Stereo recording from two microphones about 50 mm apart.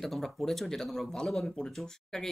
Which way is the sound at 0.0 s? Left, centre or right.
Centre.